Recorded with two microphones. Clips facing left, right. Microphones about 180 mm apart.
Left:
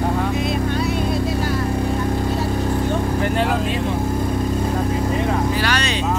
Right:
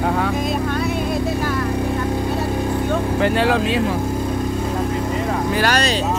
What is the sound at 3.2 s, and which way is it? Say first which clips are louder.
Vehicle: right 6 dB; 90° right.